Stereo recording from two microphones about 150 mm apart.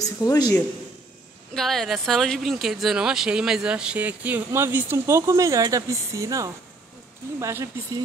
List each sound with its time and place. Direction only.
0.2 s a man's voice: 25° left (ahead or behind)
1.5 s speech: centre (ahead or behind); by 7.7 s 20° right (ahead or behind)